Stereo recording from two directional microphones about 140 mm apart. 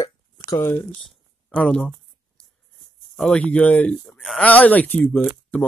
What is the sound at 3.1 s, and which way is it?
Speech, 5° left (ahead or behind).